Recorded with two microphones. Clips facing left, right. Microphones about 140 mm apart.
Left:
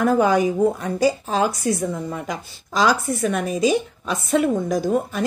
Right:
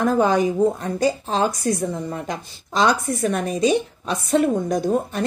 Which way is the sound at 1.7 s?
25° right (ahead or behind).